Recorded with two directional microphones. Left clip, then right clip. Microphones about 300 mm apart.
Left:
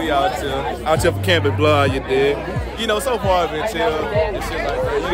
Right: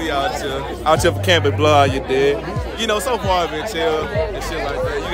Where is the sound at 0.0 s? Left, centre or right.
Centre.